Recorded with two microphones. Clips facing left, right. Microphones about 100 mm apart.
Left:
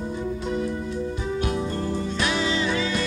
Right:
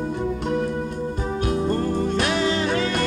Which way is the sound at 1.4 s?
45° right (ahead or behind).